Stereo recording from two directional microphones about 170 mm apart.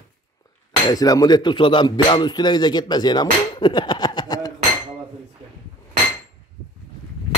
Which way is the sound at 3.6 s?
25° left (ahead or behind).